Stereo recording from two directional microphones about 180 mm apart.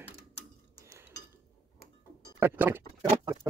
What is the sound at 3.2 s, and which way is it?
Patter, 20° right (ahead or behind).